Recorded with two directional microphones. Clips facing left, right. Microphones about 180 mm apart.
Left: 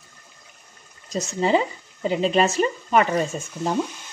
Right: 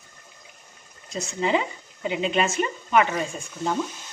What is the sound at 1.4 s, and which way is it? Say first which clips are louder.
Speech: left 3 dB; 35° left (ahead or behind).